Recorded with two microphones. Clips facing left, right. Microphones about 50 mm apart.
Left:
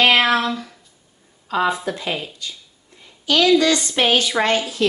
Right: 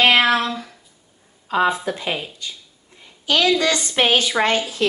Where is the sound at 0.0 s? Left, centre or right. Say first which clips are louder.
Even; centre.